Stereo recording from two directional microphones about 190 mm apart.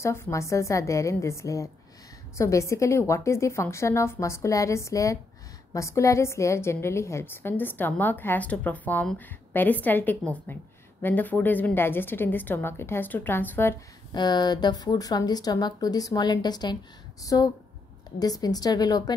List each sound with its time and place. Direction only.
0.0 s a woman's voice: 15° left (ahead or behind)
14.1 s a woman's voice: 20° left (ahead or behind)